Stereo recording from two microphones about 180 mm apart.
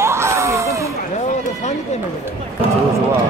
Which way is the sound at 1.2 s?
40° left (ahead or behind).